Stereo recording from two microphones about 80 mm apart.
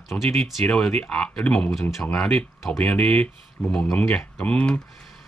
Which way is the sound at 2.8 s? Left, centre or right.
Centre.